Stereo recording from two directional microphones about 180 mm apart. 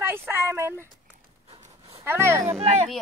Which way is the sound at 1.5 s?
40° right (ahead or behind).